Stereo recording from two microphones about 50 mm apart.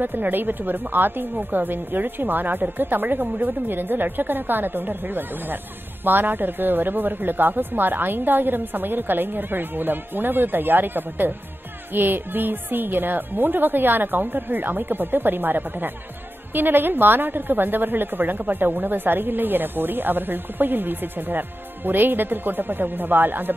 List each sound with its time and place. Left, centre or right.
0.0 s a woman's voice: right